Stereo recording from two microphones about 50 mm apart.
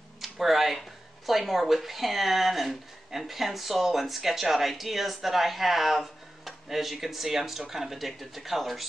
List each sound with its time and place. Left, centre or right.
0.2 s speech: centre